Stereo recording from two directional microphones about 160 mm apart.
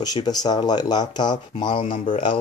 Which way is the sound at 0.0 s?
25° left (ahead or behind).